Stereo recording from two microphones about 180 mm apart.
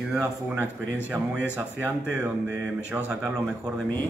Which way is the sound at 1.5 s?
5° right (ahead or behind).